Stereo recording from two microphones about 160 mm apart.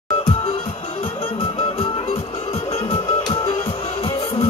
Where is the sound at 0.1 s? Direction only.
30° left (ahead or behind).